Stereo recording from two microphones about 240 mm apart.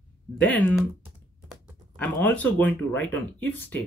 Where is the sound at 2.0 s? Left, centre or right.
Centre.